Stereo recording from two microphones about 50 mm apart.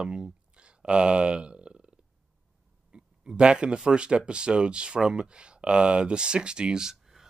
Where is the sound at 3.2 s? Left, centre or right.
Centre.